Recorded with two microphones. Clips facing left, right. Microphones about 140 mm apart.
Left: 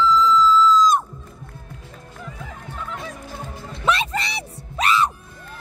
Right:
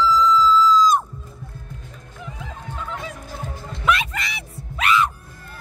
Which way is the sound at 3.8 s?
30° left (ahead or behind).